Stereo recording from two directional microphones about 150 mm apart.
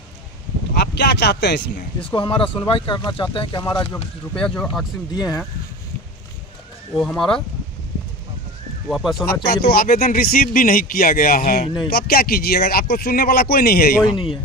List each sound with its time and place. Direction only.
0.9 s speech: 90° left
2.0 s speech: 35° left (ahead or behind)
4.3 s speech: 5° left (ahead or behind)
5.1 s speech: 25° left (ahead or behind)
7.0 s speech: 5° left (ahead or behind)
8.8 s speech: centre (ahead or behind)
9.5 s speech: 90° left; by 11.7 s 70° left (ahead or behind)
11.9 s speech: 90° left
14.0 s speech: 35° left (ahead or behind)